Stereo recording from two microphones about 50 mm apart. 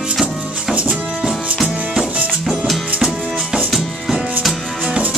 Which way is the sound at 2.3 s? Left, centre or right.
Centre.